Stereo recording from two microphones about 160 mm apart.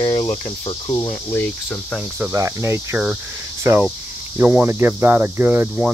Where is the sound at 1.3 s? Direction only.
10° left (ahead or behind).